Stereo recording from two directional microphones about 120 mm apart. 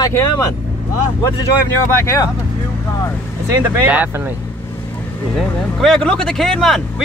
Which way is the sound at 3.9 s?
15° right (ahead or behind).